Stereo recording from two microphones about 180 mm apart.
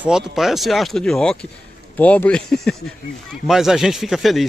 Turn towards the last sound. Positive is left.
turn(degrees=0)  # may be behind; listen again after turning